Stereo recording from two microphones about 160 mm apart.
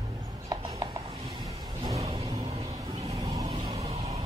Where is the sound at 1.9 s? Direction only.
40° right (ahead or behind).